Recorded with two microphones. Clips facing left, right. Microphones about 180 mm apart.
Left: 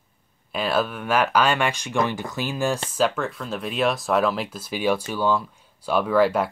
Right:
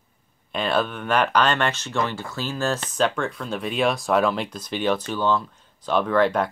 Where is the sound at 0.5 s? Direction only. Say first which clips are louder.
Even; 5° left (ahead or behind).